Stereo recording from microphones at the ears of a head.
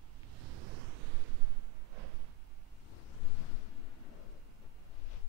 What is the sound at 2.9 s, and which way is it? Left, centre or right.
Waves, left.